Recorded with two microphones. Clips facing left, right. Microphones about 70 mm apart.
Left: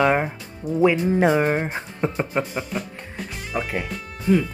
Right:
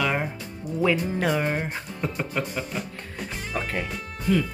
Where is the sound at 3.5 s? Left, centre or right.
Centre.